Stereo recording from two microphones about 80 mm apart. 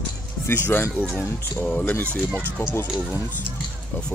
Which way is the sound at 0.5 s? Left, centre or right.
Left.